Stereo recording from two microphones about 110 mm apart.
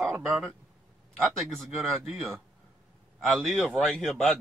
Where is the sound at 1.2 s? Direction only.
Centre (ahead or behind).